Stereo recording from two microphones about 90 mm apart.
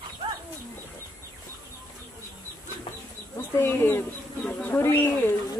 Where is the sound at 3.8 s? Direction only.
25° left (ahead or behind).